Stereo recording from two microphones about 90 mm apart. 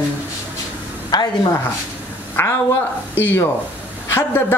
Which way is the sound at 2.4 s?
25° left (ahead or behind).